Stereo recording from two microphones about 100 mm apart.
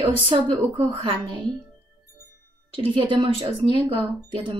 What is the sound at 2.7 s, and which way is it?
A woman's voice, 55° right (ahead or behind).